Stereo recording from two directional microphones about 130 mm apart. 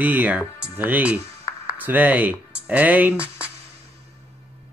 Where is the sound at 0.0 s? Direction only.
15° right (ahead or behind).